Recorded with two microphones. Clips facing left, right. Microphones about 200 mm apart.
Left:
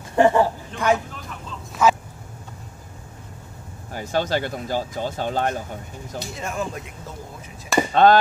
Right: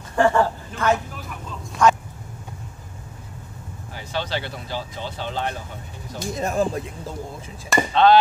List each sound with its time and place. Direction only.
0.1 s speech: 20° left (ahead or behind)
1.8 s a sound: 5° left (ahead or behind)
3.9 s speech: 45° left (ahead or behind)
6.1 s speech: 40° right (ahead or behind)
7.9 s speech: 45° left (ahead or behind)